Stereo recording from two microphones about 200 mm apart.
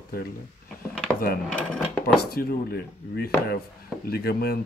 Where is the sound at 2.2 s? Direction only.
50° left (ahead or behind).